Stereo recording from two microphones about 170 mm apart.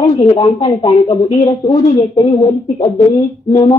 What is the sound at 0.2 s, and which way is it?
A woman's voice, 25° left (ahead or behind).